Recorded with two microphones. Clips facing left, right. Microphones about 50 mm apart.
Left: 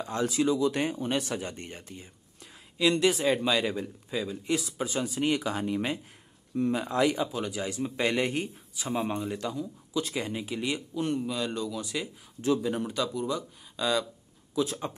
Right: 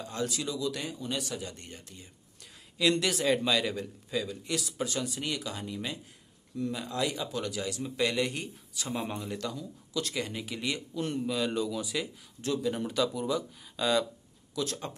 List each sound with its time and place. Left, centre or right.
0.0 s speech: left
2.8 s a man's voice: centre
5.1 s speech: left
7.2 s a man's voice: centre
7.6 s speech: left
8.7 s a man's voice: centre
12.4 s speech: left
12.7 s speech: centre
14.5 s speech: centre